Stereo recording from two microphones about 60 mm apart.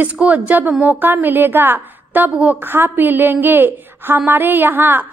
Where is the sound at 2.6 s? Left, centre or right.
Right.